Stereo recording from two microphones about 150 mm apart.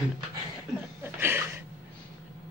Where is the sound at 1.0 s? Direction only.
15° right (ahead or behind).